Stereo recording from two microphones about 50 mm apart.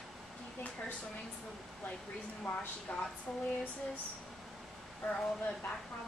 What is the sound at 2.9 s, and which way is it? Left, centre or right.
Speech, left.